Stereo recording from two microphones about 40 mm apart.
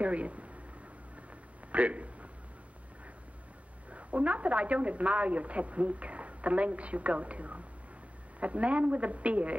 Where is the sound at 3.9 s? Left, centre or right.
Right.